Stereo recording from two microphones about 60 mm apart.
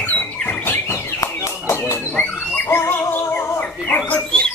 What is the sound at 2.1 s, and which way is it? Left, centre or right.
Music, left.